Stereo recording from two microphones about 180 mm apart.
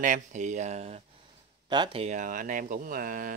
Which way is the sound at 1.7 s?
25° right (ahead or behind).